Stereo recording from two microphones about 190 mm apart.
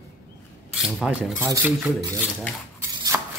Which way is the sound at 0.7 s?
5° right (ahead or behind).